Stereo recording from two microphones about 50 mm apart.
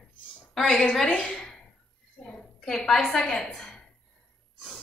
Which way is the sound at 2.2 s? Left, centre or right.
Left.